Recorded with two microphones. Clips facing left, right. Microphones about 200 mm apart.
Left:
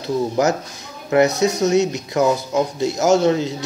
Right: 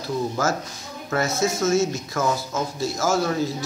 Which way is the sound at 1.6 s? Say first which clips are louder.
Left 3 dB; 20° left (ahead or behind).